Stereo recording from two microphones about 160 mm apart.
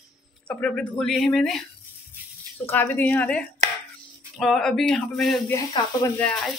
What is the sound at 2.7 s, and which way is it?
Speech, 10° left (ahead or behind).